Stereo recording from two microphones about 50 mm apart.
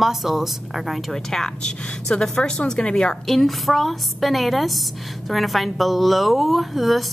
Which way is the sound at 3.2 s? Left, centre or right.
Centre.